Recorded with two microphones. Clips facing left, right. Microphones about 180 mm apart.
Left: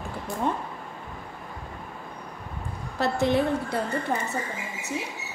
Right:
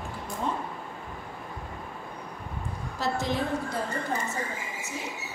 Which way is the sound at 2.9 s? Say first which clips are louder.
Left 6 dB; 60° left (ahead or behind).